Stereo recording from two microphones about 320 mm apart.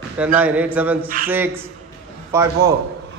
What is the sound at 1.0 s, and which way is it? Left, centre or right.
Speech, right.